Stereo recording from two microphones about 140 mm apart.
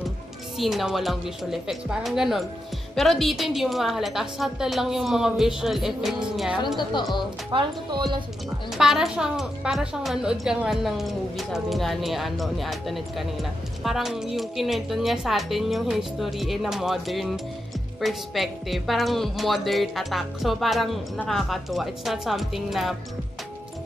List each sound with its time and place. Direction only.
0.6 s a woman's voice: centre (ahead or behind)
6.8 s speech: 30° left (ahead or behind)
7.5 s a woman's voice: 35° right (ahead or behind)
8.7 s a woman's voice: 5° right (ahead or behind)